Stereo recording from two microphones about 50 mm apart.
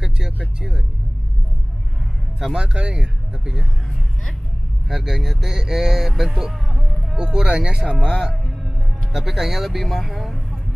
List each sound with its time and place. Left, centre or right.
0.6 s speech: centre
2.5 s speech: centre
4.8 s speech: centre
7.2 s speech: centre
9.1 s speech: centre